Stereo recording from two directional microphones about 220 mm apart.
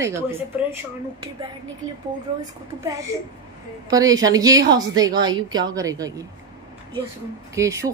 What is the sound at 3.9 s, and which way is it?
A woman's voice, 15° right (ahead or behind).